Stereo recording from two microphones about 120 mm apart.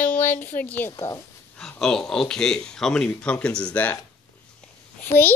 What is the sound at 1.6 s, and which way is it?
Speech, 5° left (ahead or behind).